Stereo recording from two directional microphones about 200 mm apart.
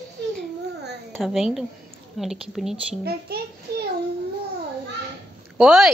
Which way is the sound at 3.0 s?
55° right (ahead or behind).